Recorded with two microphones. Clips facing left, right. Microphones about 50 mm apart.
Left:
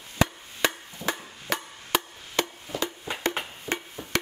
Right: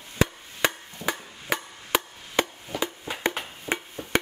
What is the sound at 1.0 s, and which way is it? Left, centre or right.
Chop, right.